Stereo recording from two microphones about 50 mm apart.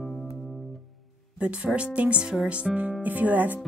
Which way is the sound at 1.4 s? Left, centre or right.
Right.